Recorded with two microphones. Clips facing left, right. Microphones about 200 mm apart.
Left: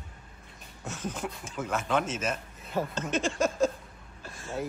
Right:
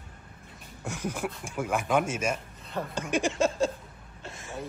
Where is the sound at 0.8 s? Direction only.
10° right (ahead or behind).